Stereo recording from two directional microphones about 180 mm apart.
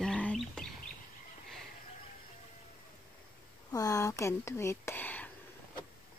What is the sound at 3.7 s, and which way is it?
Speech, 20° left (ahead or behind).